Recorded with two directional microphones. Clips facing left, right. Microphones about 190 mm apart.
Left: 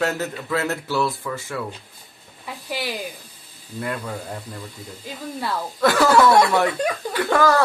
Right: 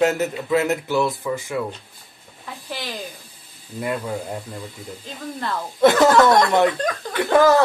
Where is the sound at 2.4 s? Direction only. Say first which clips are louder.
Left 3 dB; 10° left (ahead or behind).